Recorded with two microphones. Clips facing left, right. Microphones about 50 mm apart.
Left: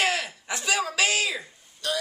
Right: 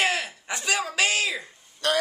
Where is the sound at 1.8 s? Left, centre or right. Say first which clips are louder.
Right 5 dB; right.